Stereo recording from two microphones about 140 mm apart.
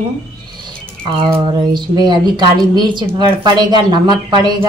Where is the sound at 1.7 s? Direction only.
30° right (ahead or behind).